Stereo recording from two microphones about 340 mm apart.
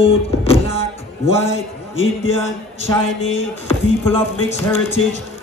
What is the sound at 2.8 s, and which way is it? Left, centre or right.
Speech, centre.